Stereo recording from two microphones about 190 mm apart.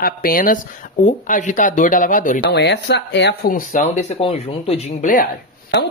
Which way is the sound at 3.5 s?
40° left (ahead or behind).